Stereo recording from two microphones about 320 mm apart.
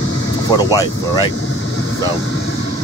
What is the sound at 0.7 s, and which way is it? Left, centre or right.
Speech, centre.